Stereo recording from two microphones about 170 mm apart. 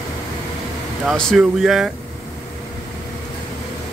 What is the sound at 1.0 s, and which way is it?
Speech, centre (ahead or behind).